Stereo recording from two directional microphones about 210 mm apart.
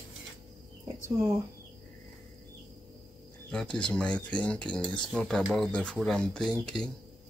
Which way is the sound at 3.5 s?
5° left (ahead or behind).